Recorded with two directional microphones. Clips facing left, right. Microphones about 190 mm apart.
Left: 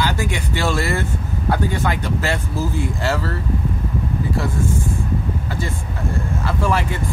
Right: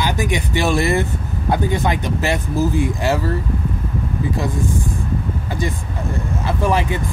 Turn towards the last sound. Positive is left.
turn(degrees=-20)  # may be behind; listen again after turning